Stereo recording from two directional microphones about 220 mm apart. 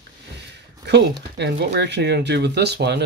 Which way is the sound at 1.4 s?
50° right (ahead or behind).